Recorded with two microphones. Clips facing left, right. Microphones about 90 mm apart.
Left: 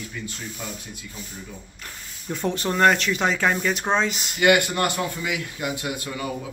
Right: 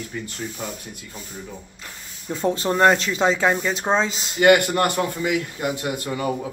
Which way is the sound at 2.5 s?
25° right (ahead or behind).